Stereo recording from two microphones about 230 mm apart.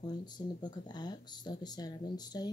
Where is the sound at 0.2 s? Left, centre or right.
Centre.